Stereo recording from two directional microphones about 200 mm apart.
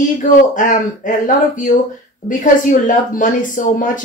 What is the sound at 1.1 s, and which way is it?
Speech, 40° left (ahead or behind).